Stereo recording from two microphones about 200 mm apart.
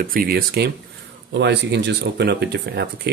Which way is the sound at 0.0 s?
45° right (ahead or behind).